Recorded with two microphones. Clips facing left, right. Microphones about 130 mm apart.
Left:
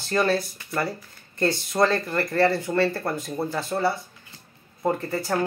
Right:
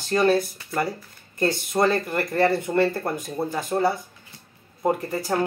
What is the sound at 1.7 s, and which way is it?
Speech, 20° right (ahead or behind).